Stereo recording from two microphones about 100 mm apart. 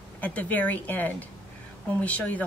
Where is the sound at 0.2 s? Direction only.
15° left (ahead or behind).